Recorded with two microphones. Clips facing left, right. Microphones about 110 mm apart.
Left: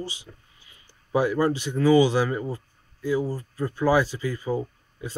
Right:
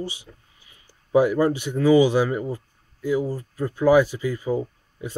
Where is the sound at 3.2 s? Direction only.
Centre (ahead or behind).